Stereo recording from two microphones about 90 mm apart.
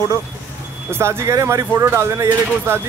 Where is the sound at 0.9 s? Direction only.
30° right (ahead or behind).